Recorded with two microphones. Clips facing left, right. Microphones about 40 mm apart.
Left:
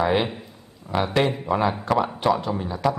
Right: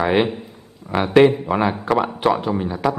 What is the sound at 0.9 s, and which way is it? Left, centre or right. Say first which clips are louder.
Speech: right 3 dB; right.